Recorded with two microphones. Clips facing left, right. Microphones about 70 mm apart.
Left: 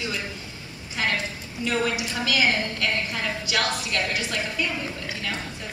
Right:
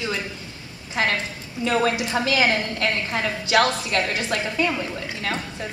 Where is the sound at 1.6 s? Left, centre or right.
Right.